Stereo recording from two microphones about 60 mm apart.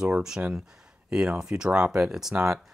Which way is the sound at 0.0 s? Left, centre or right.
Centre.